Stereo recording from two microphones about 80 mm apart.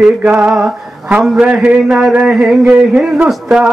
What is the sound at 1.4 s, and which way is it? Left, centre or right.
Speech, centre.